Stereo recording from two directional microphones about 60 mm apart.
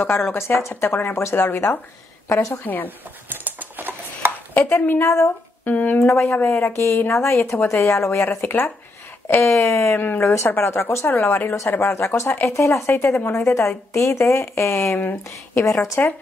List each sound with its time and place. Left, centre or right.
0.0 s speech: left
2.2 s a woman's voice: left
2.5 s speech: left
3.3 s typing: right
4.6 s speech: left
5.9 s a woman's voice: left
8.4 s speech: left
9.4 s a woman's voice: left
9.9 s speech: left
10.2 s a woman's voice: left
11.1 s speech: left
11.8 s a woman's voice: left
15.0 s speech: left